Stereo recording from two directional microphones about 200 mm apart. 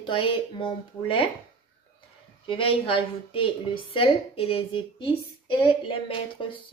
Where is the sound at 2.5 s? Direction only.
25° left (ahead or behind).